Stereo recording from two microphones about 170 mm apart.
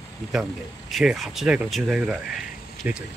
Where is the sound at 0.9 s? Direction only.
5° right (ahead or behind).